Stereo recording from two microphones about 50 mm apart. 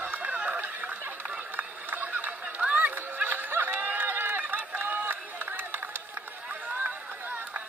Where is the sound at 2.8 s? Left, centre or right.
Right.